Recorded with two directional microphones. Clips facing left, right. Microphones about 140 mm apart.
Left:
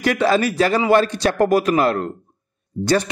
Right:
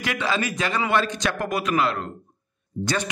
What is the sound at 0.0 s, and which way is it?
A man's voice, 40° left (ahead or behind).